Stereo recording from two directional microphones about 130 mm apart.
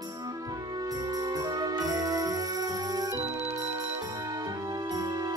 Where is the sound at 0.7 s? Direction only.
30° right (ahead or behind).